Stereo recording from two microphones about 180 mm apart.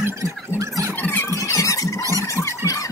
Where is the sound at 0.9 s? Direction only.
10° left (ahead or behind).